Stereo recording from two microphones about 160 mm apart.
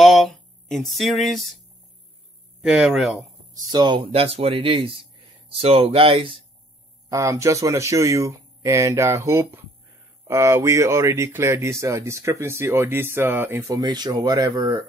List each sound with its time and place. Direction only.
0.0 s a sound: centre (ahead or behind)
2.6 s speech: 5° right (ahead or behind)
3.7 s speech: 30° right (ahead or behind)
7.1 s speech: 20° right (ahead or behind)